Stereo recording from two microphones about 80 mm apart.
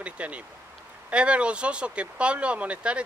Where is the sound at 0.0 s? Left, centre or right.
Centre.